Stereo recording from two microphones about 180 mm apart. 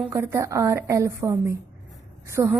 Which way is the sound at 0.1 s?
15° right (ahead or behind).